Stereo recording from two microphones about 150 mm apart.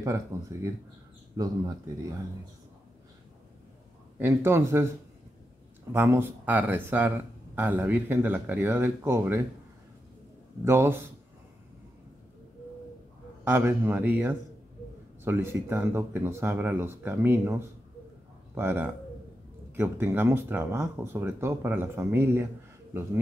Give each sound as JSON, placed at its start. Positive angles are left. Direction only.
{"t": 0.0, "sound": "speech", "side_deg": -20}
{"t": 4.2, "sound": "speech", "side_deg": -15}
{"t": 5.9, "sound": "speech", "side_deg": -15}
{"t": 10.6, "sound": "speech", "side_deg": -15}
{"t": 13.4, "sound": "speech", "side_deg": -15}